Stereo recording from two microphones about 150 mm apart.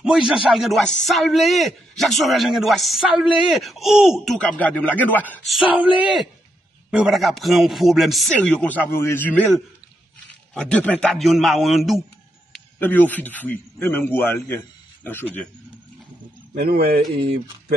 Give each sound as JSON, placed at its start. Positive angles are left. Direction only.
{"t": 0.0, "sound": "a man's voice", "side_deg": -5}
{"t": 5.7, "sound": "a man's voice", "side_deg": -10}
{"t": 10.5, "sound": "a man's voice", "side_deg": 5}
{"t": 12.5, "sound": "a man's voice", "side_deg": 10}
{"t": 16.5, "sound": "speech", "side_deg": -90}